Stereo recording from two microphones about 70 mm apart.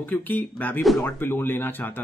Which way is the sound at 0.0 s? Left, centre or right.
Left.